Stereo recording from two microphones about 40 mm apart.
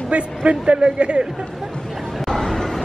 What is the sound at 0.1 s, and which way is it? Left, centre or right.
A man's voice, right.